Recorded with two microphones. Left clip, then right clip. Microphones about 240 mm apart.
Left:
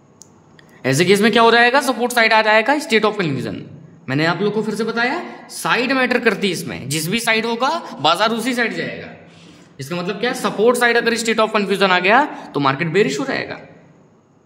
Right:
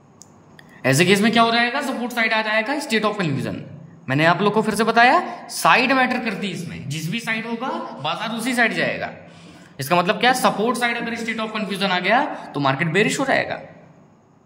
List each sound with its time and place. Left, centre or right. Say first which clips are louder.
0.8 s a woman's voice: left 2 dB; centre; by 8.3 s left
8.4 s speech: right 1 dB; centre
10.7 s a woman's voice: left 8 dB; centre